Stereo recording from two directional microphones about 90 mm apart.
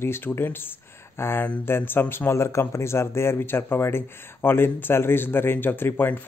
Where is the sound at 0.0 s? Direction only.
25° left (ahead or behind).